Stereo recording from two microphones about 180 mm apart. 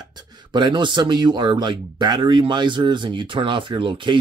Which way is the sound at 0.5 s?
25° right (ahead or behind).